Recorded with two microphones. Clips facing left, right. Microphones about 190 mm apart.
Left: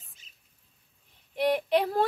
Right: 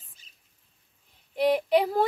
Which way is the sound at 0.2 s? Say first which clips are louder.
Even; 35° right (ahead or behind).